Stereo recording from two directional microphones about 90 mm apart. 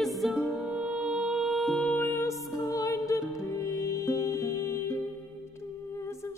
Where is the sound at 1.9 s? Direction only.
20° left (ahead or behind).